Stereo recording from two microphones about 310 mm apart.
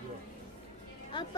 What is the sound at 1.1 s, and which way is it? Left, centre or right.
Music, centre.